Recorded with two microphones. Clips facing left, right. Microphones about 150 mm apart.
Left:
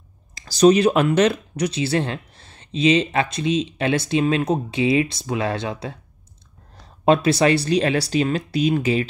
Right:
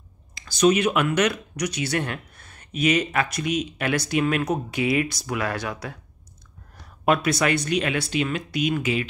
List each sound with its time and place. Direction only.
0.3 s speech: 35° left (ahead or behind)
7.1 s speech: 30° left (ahead or behind)